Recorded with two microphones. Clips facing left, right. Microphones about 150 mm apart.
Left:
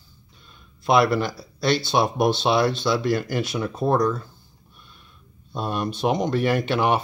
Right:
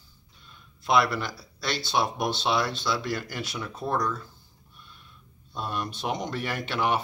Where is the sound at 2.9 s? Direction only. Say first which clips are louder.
Left 8 dB; 15° left (ahead or behind).